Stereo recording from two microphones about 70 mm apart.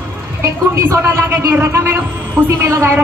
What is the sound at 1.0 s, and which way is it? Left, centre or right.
Speech, right.